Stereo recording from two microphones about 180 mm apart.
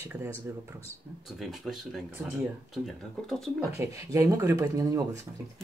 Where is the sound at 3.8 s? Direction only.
15° right (ahead or behind).